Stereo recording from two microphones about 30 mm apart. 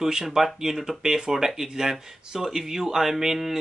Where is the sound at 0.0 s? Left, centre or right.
Centre.